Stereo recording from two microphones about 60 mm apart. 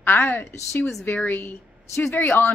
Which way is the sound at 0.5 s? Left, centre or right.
Left.